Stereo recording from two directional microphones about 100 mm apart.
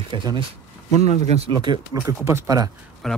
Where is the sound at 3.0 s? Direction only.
5° left (ahead or behind).